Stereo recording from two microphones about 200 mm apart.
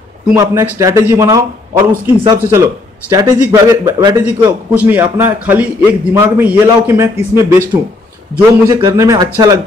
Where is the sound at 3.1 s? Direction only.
15° right (ahead or behind).